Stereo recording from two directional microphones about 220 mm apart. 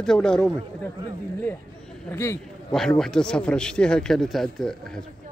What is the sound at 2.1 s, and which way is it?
A man's voice, 10° left (ahead or behind).